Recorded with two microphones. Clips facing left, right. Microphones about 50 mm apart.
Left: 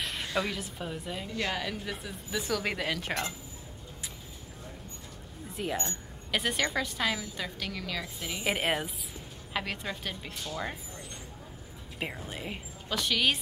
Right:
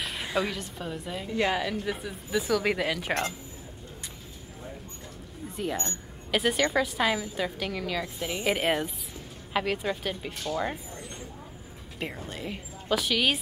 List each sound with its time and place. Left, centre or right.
0.0 s a sound: centre
0.5 s speech: centre
1.3 s a woman's voice: centre
1.6 s speech: centre
5.6 s a woman's voice: centre
8.5 s speech: centre
12.0 s a woman's voice: centre
12.8 s speech: centre